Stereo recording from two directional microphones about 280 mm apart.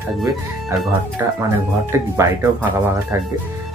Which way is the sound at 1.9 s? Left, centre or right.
Centre.